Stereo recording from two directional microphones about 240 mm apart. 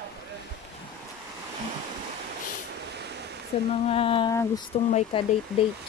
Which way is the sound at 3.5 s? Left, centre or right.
Left.